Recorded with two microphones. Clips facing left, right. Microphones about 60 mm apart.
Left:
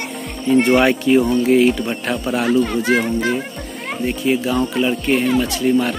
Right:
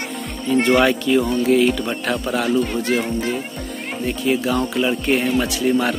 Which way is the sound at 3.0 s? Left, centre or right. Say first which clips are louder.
Left 3 dB; left.